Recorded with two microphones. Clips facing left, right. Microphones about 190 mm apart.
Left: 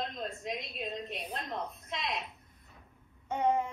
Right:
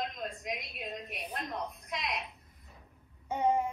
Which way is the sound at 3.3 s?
10° right (ahead or behind).